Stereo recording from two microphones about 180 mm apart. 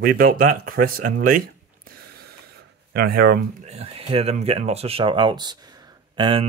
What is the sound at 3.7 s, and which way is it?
Speech, 35° right (ahead or behind).